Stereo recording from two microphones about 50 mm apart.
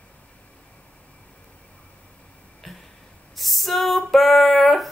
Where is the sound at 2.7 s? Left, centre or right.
Centre.